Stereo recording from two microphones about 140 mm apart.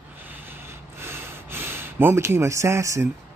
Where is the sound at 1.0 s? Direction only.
15° right (ahead or behind).